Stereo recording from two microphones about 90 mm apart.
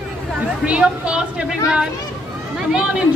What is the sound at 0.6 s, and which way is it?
A woman's voice, 10° right (ahead or behind).